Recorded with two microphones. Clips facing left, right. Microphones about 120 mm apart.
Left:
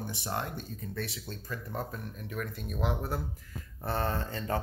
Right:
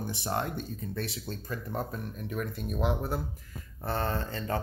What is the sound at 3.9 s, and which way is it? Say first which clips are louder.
Speech: right 1 dB; 5° left (ahead or behind).